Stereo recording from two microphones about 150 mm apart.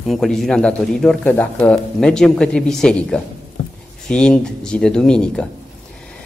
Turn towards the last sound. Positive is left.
turn(degrees=5)  # may be behind; listen again after turning